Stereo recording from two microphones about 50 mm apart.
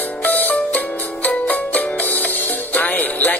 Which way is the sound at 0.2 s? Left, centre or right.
Left.